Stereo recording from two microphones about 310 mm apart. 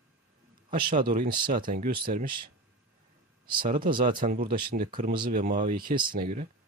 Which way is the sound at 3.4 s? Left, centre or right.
Centre.